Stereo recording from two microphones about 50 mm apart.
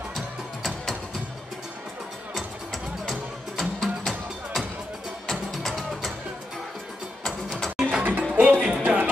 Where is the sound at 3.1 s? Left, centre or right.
Centre.